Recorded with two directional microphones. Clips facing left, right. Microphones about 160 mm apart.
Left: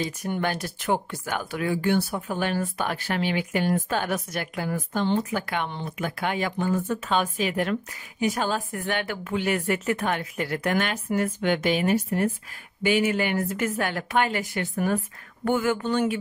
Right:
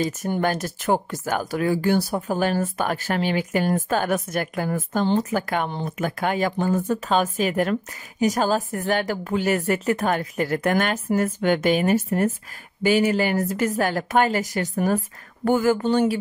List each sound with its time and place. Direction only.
0.0 s a woman's voice: 45° right (ahead or behind)